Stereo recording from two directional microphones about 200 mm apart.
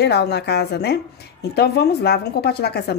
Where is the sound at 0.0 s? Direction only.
55° left (ahead or behind).